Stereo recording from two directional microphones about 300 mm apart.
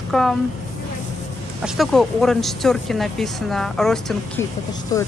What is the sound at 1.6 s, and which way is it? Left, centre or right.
Speech, centre.